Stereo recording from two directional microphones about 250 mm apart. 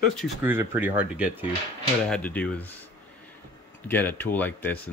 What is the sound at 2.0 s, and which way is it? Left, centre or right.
Speech, centre.